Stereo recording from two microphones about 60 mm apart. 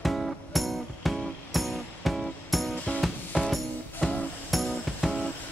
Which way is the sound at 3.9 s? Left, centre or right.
Centre.